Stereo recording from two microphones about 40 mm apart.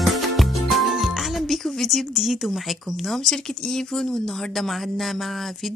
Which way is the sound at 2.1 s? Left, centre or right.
Centre.